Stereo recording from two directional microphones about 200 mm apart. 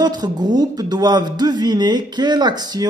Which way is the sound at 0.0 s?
20° right (ahead or behind).